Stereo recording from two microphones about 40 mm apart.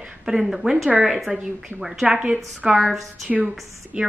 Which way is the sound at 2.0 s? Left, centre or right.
Right.